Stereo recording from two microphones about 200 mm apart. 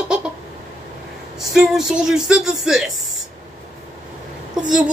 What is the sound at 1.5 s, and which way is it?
Speech, centre (ahead or behind).